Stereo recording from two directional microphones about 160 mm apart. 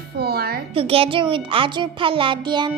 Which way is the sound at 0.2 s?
75° right (ahead or behind).